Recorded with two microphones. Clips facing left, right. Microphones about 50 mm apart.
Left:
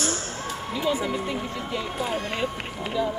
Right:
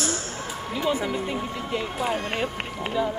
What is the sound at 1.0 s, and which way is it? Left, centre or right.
Speech, centre.